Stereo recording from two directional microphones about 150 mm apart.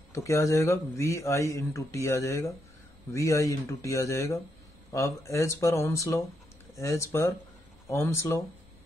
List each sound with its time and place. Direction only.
0.1 s speech: 20° left (ahead or behind)